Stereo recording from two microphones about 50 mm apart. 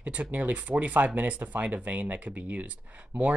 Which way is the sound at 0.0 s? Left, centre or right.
Right.